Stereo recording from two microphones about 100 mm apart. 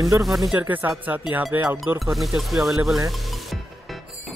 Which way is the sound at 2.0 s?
Centre (ahead or behind).